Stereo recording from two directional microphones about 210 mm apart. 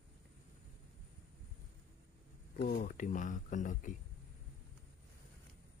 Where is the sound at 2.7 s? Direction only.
40° left (ahead or behind).